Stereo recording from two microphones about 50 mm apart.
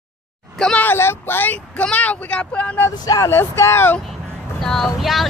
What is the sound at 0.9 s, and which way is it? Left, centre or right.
Speech, left.